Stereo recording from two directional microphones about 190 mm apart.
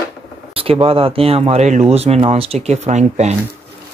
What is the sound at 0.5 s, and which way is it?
Speech, 30° right (ahead or behind).